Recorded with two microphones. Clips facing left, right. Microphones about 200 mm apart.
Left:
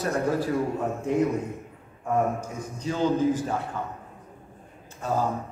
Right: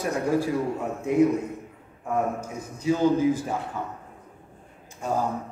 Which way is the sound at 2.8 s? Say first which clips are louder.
Right 3 dB; 10° right (ahead or behind).